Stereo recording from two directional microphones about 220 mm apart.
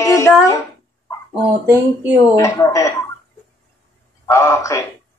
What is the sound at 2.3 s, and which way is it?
Speech, 15° left (ahead or behind).